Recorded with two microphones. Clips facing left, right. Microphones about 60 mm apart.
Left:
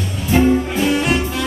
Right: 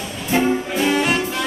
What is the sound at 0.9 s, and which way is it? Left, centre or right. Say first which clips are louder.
Music: right 1 dB; centre.